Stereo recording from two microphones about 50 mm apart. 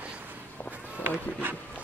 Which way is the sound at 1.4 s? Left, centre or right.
Right.